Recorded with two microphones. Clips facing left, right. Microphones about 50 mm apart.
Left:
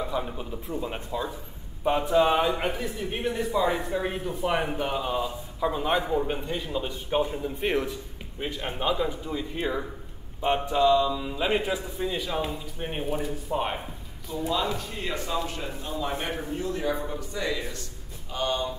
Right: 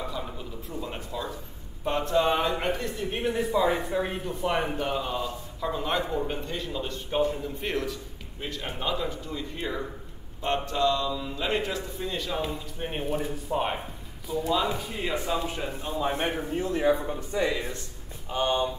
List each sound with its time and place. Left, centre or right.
0.0 s speech: left; by 13.7 s centre
14.7 s a man's voice: centre